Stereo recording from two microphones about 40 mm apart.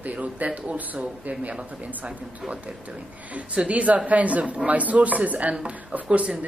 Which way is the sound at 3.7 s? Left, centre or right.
Right.